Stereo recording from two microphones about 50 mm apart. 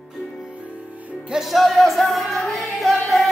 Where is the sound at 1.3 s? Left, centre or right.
Centre.